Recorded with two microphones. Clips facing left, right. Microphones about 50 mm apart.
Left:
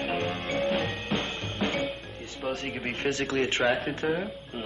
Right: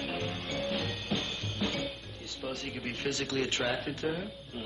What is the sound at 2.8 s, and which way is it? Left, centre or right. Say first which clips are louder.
A man's voice: left 5 dB; left.